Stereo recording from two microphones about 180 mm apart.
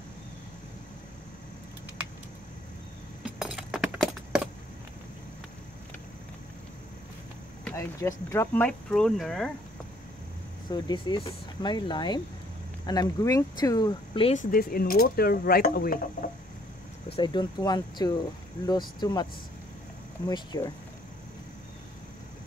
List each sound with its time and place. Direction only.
3.3 s a sound: 5° right (ahead or behind)
7.6 s a sound: 15° left (ahead or behind)
8.3 s speech: 15° left (ahead or behind)
8.6 s speech: 5° left (ahead or behind)
10.7 s speech: 25° left (ahead or behind)
14.3 s speech: 50° left (ahead or behind)
17.1 s speech: 25° left (ahead or behind)
20.2 s speech: 20° left (ahead or behind)